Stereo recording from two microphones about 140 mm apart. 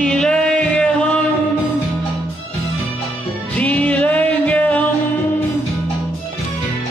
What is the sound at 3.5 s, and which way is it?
Music, 10° left (ahead or behind).